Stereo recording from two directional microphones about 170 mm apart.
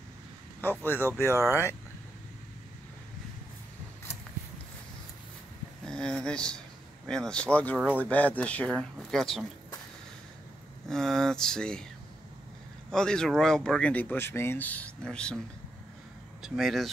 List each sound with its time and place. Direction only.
0.6 s speech: 10° left (ahead or behind)
5.9 s speech: 5° left (ahead or behind)
7.7 s speech: 10° right (ahead or behind)
8.0 s speech: 10° left (ahead or behind)
10.9 s speech: 5° left (ahead or behind)
12.9 s speech: 5° left (ahead or behind)
16.4 s speech: centre (ahead or behind)